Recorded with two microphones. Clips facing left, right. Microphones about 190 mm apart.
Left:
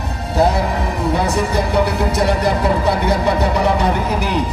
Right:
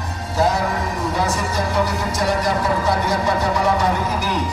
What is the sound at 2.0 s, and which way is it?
Speech, 60° left (ahead or behind).